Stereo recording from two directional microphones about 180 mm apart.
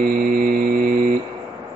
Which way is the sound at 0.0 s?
55° right (ahead or behind).